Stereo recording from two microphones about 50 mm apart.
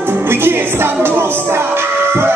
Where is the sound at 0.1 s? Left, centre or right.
Right.